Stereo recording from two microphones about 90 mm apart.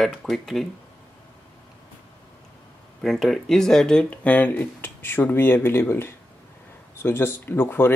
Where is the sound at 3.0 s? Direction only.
5° left (ahead or behind); by 7.9 s 25° left (ahead or behind).